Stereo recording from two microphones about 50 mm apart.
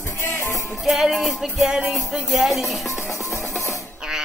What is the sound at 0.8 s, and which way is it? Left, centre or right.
Music, centre.